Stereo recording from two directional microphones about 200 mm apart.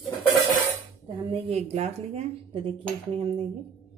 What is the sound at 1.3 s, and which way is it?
A woman's voice, 35° right (ahead or behind).